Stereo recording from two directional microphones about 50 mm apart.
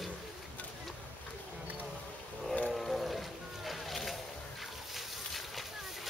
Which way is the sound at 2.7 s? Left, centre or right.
Centre.